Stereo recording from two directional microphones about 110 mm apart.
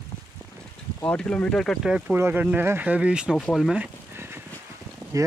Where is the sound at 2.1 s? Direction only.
15° right (ahead or behind); by 3.8 s centre (ahead or behind).